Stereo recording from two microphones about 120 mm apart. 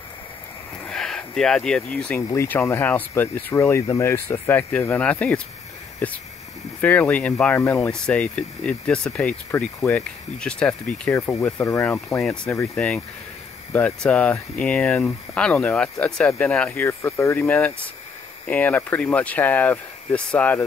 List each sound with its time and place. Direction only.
0.8 s speech: 5° left (ahead or behind)
9.5 s speech: 20° left (ahead or behind)
9.8 s speech: 10° left (ahead or behind)